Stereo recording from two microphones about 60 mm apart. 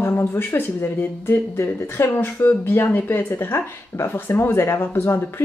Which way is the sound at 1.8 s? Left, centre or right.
Left.